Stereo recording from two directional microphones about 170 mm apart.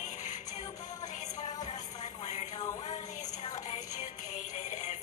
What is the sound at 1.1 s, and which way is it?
Music, 45° left (ahead or behind).